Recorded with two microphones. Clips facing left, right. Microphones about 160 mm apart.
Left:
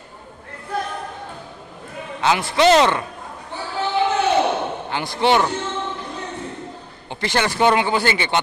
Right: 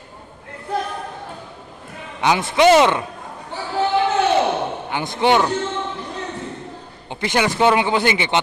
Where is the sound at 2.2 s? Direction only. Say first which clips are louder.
Right 2 dB; 15° right (ahead or behind).